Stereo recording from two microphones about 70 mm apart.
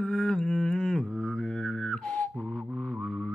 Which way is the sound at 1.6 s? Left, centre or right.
Centre.